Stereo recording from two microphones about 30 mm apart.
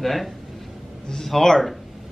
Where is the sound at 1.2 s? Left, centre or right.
Centre.